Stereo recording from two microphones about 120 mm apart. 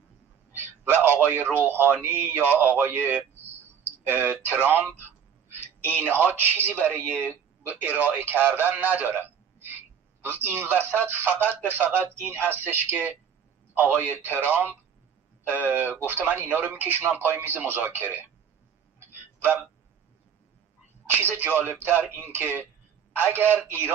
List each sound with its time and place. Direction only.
0.5 s a sound: 20° right (ahead or behind)
1.6 s a man's voice: 15° right (ahead or behind)
7.0 s speech: 15° left (ahead or behind)
7.6 s a man's voice: 15° right (ahead or behind)
18.9 s a sound: 20° right (ahead or behind)
21.2 s speech: 20° right (ahead or behind)